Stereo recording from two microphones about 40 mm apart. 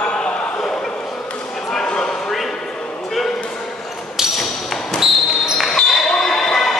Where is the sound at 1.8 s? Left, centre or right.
Left.